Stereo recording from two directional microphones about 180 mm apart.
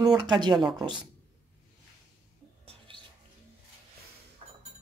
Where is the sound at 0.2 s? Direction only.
25° right (ahead or behind).